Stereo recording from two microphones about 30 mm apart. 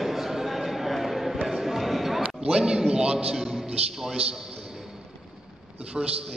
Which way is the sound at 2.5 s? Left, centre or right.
Right.